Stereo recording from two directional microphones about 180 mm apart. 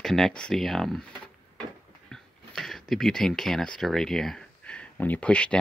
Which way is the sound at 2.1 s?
Centre (ahead or behind).